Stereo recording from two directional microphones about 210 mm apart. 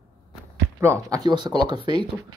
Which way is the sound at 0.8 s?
15° right (ahead or behind).